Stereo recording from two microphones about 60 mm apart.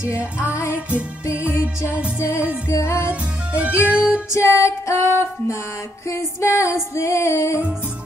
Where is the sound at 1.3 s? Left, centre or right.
Right.